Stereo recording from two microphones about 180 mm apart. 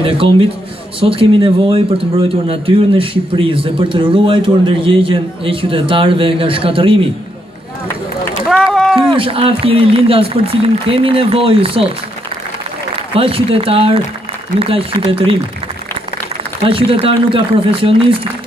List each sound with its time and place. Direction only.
0.0 s a man's voice: 30° right (ahead or behind)
8.5 s run: centre (ahead or behind)
9.1 s a man's voice: 30° right (ahead or behind)
13.1 s a man's voice: 30° right (ahead or behind)
16.6 s a man's voice: 30° right (ahead or behind)